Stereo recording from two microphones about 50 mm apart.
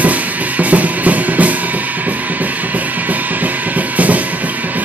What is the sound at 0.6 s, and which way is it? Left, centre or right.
Music, right.